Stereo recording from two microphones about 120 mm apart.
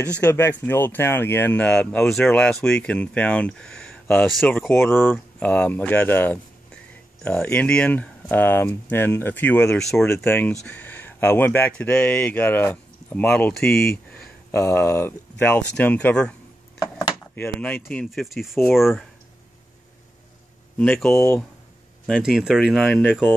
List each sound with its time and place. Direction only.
0.2 s speech: 15° left (ahead or behind)
4.5 s speech: 15° left (ahead or behind)
10.5 s speech: 5° left (ahead or behind)
10.8 s speech: 15° left (ahead or behind)
14.5 s speech: 20° left (ahead or behind)
17.4 s speech: 15° left (ahead or behind)
18.2 s speech: centre (ahead or behind)
20.7 s speech: 15° left (ahead or behind)
22.0 s speech: centre (ahead or behind)